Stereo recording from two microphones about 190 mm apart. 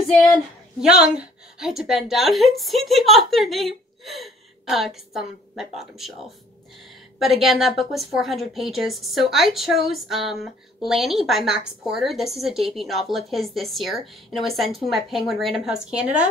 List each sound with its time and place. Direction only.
0.7 s a woman's voice: 5° right (ahead or behind)
7.2 s a woman's voice: centre (ahead or behind)